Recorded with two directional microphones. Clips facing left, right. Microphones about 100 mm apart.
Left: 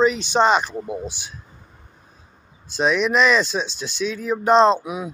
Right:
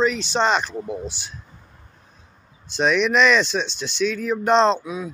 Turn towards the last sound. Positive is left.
turn(degrees=20)  # may be behind; listen again after turning